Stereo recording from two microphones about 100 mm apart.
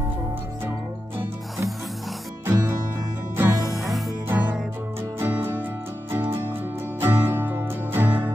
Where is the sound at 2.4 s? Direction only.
25° right (ahead or behind).